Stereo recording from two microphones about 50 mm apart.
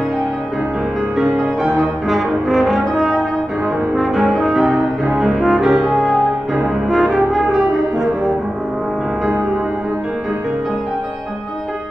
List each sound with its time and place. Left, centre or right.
1.6 s brass instrument: centre
4.7 s music: centre
5.7 s music: right
5.9 s music: centre
6.9 s brass instrument: centre